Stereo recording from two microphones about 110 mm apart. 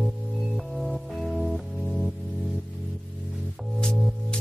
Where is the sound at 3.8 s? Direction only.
5° left (ahead or behind).